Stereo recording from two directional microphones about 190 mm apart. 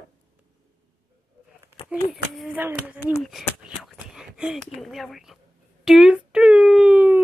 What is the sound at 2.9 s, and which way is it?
Speech, 10° right (ahead or behind).